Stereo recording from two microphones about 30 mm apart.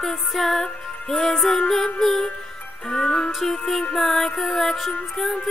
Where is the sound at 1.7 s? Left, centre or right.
Centre.